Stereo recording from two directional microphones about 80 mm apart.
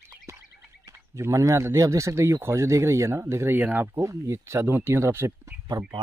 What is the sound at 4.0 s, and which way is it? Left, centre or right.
Speech, right.